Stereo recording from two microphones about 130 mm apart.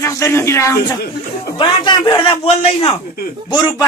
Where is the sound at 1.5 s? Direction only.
35° left (ahead or behind).